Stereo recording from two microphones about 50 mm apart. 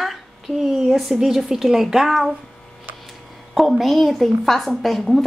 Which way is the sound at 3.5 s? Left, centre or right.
Centre.